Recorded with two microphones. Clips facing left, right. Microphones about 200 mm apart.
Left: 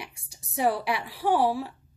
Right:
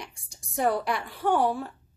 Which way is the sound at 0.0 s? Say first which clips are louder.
Even; 5° left (ahead or behind).